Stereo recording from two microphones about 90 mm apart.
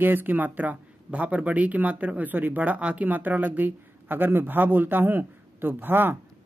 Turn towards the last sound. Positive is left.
turn(degrees=-25)  # may be behind; listen again after turning